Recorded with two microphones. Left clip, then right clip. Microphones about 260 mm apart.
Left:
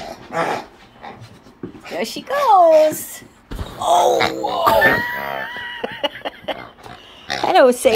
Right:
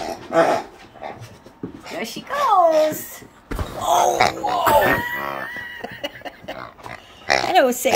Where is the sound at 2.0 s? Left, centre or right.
Centre.